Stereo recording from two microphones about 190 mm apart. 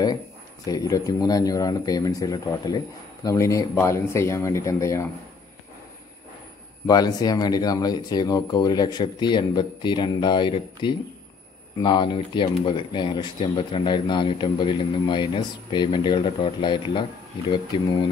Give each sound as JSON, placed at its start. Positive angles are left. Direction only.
{"t": 0.7, "sound": "speech", "side_deg": 20}
{"t": 6.9, "sound": "speech", "side_deg": 20}